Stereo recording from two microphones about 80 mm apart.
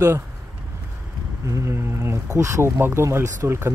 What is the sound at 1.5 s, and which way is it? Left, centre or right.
Speech, right.